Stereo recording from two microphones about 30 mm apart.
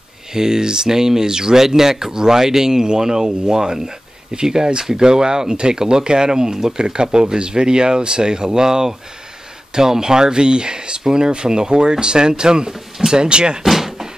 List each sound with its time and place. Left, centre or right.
0.3 s speech: centre
13.7 s door: centre